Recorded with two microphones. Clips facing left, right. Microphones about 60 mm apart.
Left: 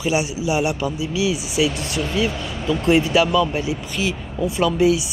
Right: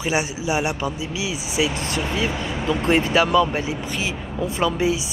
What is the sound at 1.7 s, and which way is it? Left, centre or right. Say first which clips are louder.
Speech: right 1 dB; right.